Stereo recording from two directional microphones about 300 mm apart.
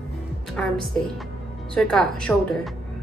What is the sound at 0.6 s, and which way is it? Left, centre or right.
Speech, centre.